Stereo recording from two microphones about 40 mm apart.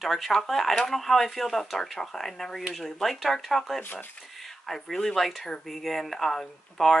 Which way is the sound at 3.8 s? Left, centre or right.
Left.